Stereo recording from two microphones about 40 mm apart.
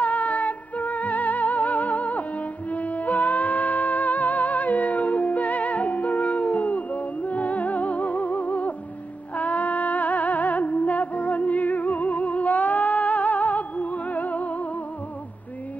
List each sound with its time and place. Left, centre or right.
0.0 s music: left